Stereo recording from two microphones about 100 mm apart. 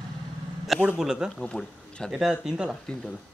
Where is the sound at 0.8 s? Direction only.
10° right (ahead or behind).